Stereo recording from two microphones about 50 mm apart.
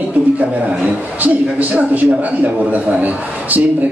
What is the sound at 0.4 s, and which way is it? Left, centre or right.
A man's voice, right.